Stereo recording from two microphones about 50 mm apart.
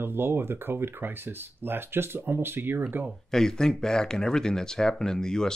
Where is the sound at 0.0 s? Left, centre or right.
Right.